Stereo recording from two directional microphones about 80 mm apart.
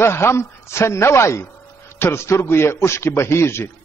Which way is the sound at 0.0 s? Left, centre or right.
Left.